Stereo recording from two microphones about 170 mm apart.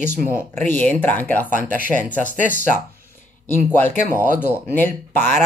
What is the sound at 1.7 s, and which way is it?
Speech, 50° right (ahead or behind).